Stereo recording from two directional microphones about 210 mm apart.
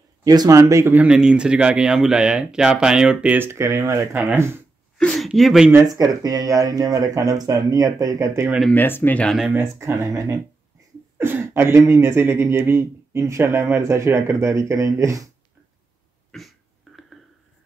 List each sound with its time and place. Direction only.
0.2 s speech: 15° right (ahead or behind)
4.9 s speech: centre (ahead or behind)
8.5 s speech: 5° left (ahead or behind); by 15.2 s 15° right (ahead or behind)
16.3 s cough: centre (ahead or behind)